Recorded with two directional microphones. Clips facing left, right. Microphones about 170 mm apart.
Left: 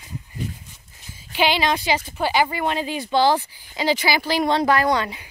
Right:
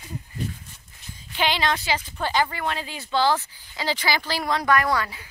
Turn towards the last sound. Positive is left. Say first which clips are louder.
# left 4 dB
turn(degrees=20)  # may be behind; listen again after turning